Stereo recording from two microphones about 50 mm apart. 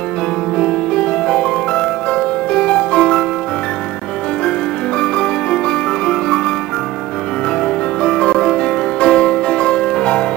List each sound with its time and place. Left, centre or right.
0.6 s music: left
5.0 s music: centre
7.6 s music: centre